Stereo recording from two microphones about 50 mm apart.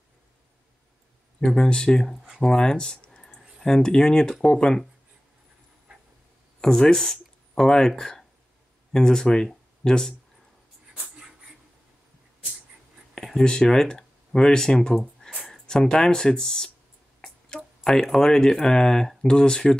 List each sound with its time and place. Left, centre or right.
1.4 s speech: centre
6.6 s speech: centre
11.0 s a sound: centre
13.1 s speech: centre
17.8 s speech: centre